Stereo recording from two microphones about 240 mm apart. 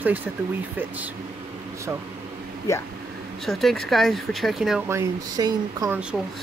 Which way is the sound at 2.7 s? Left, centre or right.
Centre.